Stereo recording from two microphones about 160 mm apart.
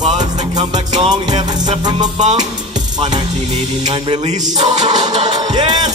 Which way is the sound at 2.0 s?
45° right (ahead or behind).